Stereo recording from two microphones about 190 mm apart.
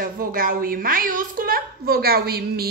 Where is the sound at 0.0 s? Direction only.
50° right (ahead or behind).